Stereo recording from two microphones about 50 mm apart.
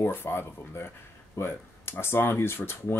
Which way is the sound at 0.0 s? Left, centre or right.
Left.